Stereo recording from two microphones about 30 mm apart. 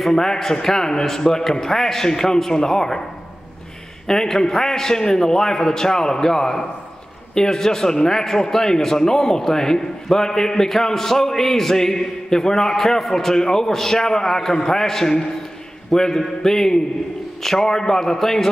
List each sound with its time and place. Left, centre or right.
0.1 s a man's voice: centre
4.1 s a man's voice: centre